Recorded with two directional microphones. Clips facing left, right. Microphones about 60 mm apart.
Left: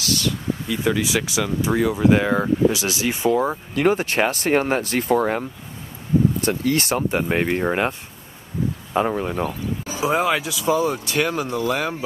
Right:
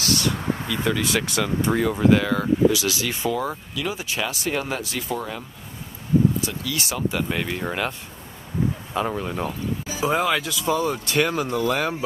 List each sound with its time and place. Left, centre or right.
0.7 s speech: centre
2.0 s speech: left
3.7 s speech: left
6.4 s speech: left
8.9 s speech: centre
9.3 s speech: centre